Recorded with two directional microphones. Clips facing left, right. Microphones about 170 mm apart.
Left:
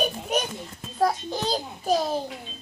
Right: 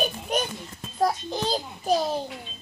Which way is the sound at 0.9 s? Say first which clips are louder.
Left 1 dB; centre (ahead or behind).